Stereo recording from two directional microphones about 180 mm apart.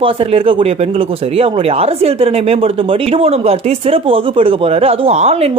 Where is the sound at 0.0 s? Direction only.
30° right (ahead or behind).